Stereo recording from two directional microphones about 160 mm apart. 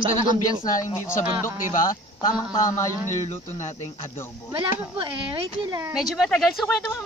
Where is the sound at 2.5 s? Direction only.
20° left (ahead or behind).